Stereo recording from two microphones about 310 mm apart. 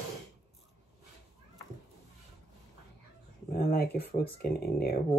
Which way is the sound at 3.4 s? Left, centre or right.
Left.